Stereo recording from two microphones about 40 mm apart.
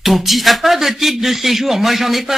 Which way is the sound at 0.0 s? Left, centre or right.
Centre.